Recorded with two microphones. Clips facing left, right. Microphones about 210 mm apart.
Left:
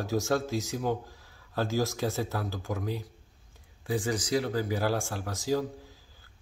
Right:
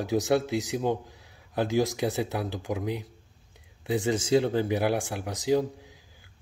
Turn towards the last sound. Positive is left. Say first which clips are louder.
# even
turn(degrees=-20)  # may be behind; listen again after turning